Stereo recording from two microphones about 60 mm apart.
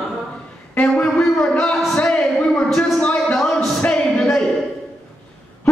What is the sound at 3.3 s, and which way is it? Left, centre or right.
Music, centre.